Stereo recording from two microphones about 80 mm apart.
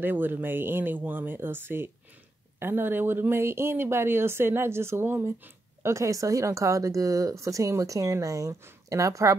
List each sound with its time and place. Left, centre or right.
0.0 s speech: right